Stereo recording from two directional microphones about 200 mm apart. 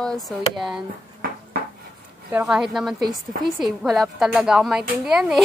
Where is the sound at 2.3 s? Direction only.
5° right (ahead or behind).